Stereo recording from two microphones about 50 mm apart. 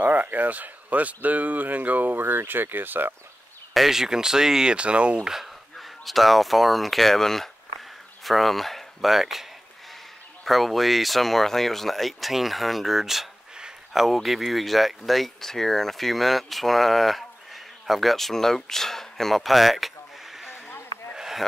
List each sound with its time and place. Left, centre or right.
0.0 s speech: right
3.7 s speech: centre
4.7 s speech: right
5.3 s speech: centre
21.1 s a sound: centre